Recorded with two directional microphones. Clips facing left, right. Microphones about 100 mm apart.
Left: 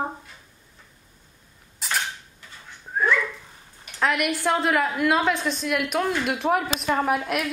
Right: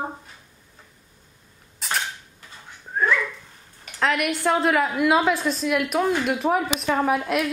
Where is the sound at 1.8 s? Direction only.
Centre (ahead or behind).